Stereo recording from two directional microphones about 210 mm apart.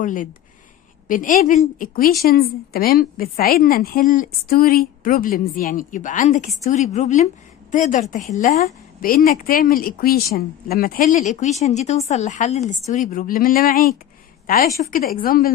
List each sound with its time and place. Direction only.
0.0 s a woman's voice: 40° left (ahead or behind)